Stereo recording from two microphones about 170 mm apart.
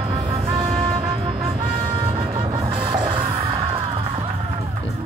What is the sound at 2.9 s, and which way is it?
Music, 30° right (ahead or behind).